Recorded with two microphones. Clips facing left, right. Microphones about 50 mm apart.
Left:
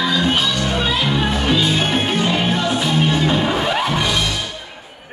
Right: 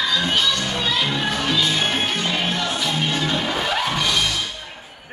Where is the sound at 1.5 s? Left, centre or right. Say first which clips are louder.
Left 3 dB; centre.